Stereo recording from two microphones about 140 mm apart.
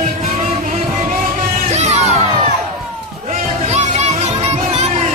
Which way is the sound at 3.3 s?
55° right (ahead or behind).